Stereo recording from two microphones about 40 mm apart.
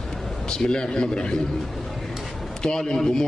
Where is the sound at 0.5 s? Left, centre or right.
Centre.